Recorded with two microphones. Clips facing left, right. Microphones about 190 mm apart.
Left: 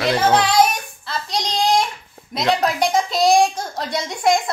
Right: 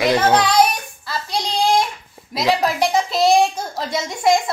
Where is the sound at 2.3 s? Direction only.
5° right (ahead or behind).